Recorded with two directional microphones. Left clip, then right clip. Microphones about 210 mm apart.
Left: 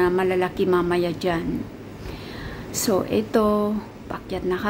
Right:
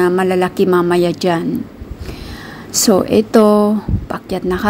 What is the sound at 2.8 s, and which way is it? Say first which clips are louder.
A woman's voice: right 10 dB; 30° right (ahead or behind).